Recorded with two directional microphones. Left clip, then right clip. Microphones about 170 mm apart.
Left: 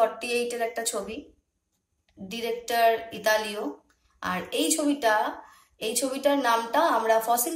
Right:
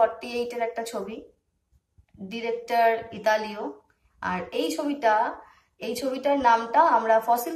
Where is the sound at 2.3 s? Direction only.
30° left (ahead or behind).